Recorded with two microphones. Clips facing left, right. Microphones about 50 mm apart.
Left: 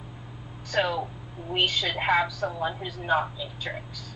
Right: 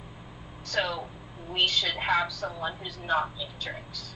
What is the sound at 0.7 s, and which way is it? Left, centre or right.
Speech, centre.